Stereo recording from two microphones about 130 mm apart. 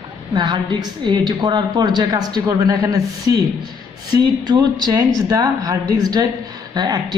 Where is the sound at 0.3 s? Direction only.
35° right (ahead or behind).